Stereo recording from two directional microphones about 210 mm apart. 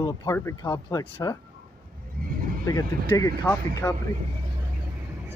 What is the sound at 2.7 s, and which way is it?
Speech, 15° left (ahead or behind).